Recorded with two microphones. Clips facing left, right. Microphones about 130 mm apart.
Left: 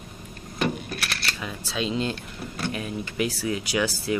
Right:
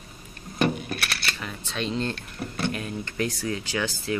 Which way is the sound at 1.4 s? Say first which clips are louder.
Left 4 dB; 5° left (ahead or behind).